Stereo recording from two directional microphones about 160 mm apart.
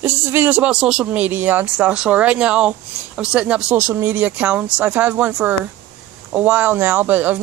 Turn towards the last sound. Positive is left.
turn(degrees=-10)  # may be behind; listen again after turning